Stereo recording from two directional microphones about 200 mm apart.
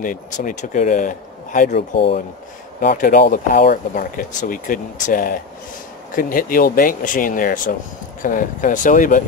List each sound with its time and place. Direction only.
0.0 s speech: 40° left (ahead or behind)
2.8 s speech: 45° left (ahead or behind)